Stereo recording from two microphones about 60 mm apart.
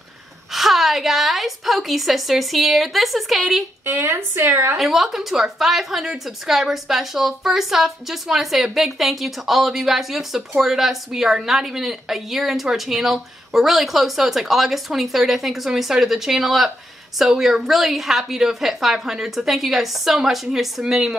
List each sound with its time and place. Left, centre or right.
0.5 s a woman's voice: centre
3.8 s a woman's voice: right
4.7 s a woman's voice: centre